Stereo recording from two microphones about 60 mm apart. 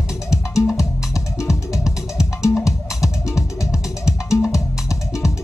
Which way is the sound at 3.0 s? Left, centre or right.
Left.